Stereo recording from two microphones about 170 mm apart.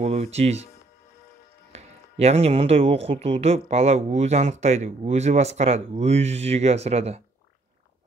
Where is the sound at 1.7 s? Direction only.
40° right (ahead or behind).